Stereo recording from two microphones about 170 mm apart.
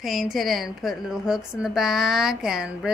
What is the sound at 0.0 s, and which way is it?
A woman's voice, centre (ahead or behind).